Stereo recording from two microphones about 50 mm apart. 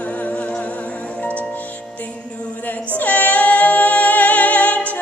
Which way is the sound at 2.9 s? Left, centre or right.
Left.